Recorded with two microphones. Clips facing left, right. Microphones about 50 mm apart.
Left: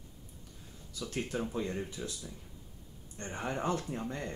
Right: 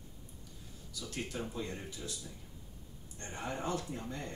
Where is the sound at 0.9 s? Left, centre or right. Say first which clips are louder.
Left 5 dB; left.